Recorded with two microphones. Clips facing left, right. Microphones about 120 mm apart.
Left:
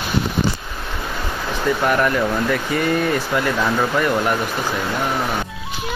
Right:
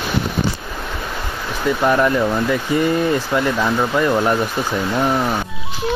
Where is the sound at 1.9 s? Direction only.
20° right (ahead or behind).